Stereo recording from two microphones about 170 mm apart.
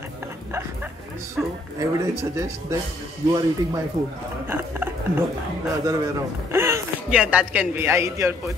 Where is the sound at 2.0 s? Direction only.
15° right (ahead or behind).